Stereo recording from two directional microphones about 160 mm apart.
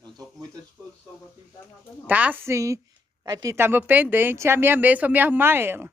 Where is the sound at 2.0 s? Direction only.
10° right (ahead or behind).